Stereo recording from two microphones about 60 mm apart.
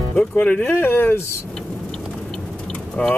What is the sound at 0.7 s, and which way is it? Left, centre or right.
Speech, left.